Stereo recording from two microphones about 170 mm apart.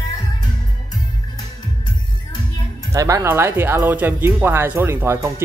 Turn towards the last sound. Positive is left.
turn(degrees=-15)  # may be behind; listen again after turning